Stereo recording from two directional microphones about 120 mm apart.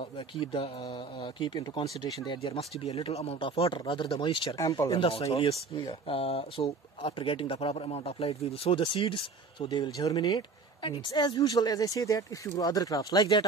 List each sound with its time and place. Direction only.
0.4 s speech: 50° left (ahead or behind)
4.6 s speech: 30° left (ahead or behind)
4.9 s speech: 50° left (ahead or behind); by 13.5 s 35° left (ahead or behind)